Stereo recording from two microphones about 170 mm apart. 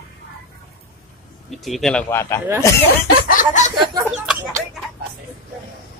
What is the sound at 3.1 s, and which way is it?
Snicker, 50° left (ahead or behind).